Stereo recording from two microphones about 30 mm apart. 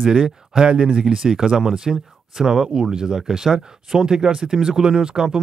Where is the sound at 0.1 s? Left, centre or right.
Right.